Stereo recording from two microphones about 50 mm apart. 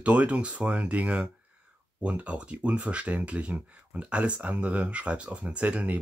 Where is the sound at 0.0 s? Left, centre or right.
Right.